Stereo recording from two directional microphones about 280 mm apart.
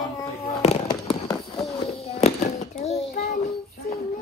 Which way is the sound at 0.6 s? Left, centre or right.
Centre.